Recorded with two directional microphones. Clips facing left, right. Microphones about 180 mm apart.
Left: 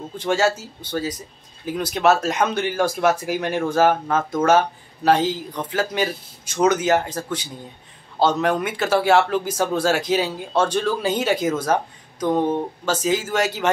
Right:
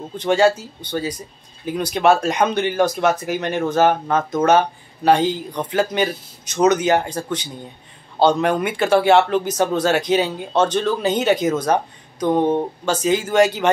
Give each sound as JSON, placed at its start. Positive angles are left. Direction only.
{"t": 0.2, "sound": "speech", "side_deg": 5}
{"t": 8.2, "sound": "speech", "side_deg": 0}
{"t": 12.4, "sound": "speech", "side_deg": -30}
{"t": 12.8, "sound": "speech", "side_deg": 5}